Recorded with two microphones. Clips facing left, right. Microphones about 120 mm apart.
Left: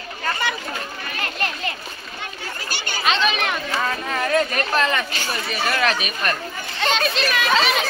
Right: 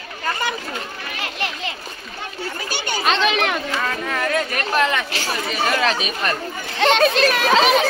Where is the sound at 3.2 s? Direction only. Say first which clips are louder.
Right 3 dB; 90° right.